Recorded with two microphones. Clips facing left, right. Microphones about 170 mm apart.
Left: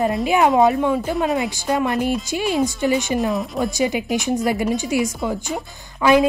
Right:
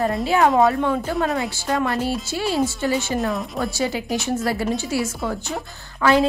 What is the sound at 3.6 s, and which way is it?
A woman's voice, 15° left (ahead or behind).